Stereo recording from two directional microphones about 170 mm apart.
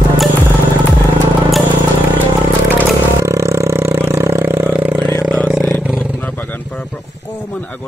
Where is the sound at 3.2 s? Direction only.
15° right (ahead or behind).